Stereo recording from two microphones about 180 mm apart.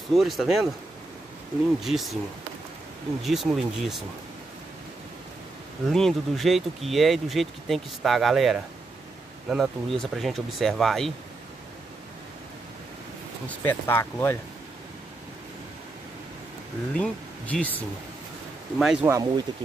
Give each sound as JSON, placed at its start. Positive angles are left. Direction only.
{"t": 0.1, "sound": "speech", "side_deg": 0}
{"t": 1.8, "sound": "speech", "side_deg": 0}
{"t": 3.2, "sound": "speech", "side_deg": 0}
{"t": 5.9, "sound": "speech", "side_deg": 0}
{"t": 13.5, "sound": "speech", "side_deg": 10}
{"t": 16.9, "sound": "speech", "side_deg": 5}
{"t": 18.8, "sound": "speech", "side_deg": -5}
{"t": 19.0, "sound": "speech", "side_deg": -20}